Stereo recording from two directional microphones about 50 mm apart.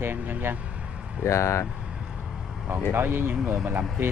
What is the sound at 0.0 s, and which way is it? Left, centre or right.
Speech, right.